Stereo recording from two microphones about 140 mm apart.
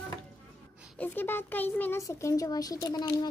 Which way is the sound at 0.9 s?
15° left (ahead or behind).